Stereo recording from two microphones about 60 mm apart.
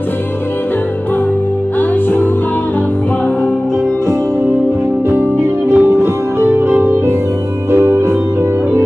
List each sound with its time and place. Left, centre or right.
1.8 s music: left
5.1 s music: right